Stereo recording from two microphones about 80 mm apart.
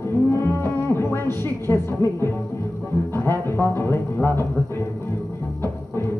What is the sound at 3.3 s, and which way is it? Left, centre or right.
Speech, left.